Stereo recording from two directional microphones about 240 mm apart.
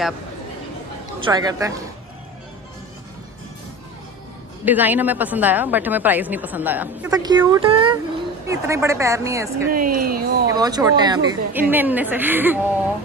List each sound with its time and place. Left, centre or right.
1.2 s a woman's voice: centre
4.6 s a woman's voice: centre
9.7 s speech: right
10.5 s a woman's voice: centre